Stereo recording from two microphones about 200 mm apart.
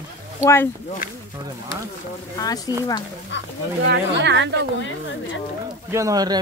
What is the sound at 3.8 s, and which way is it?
Speech, 60° right (ahead or behind).